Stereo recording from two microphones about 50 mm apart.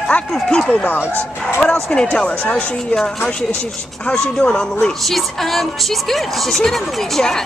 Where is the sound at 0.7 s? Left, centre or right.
Left.